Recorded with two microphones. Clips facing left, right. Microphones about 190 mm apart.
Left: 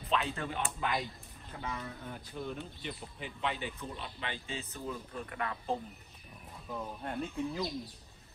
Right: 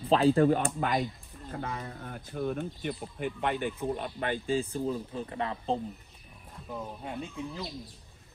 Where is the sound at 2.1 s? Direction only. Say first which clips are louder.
Right 9 dB; 55° right (ahead or behind).